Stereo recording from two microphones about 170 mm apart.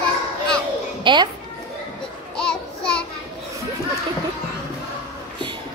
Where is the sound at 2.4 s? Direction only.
5° left (ahead or behind).